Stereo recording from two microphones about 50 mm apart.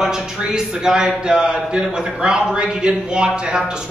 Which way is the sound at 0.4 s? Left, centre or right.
Centre.